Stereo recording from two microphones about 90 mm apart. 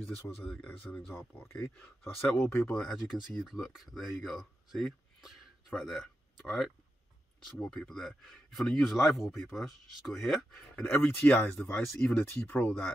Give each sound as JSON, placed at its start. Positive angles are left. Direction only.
{"t": 0.5, "sound": "speech", "side_deg": 10}
{"t": 1.1, "sound": "speech", "side_deg": 25}
{"t": 1.8, "sound": "speech", "side_deg": 10}
{"t": 2.8, "sound": "speech", "side_deg": 5}
{"t": 7.7, "sound": "speech", "side_deg": 5}
{"t": 11.1, "sound": "speech", "side_deg": 15}